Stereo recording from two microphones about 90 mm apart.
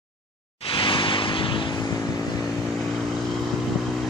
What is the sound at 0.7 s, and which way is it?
Vehicle, 70° left (ahead or behind).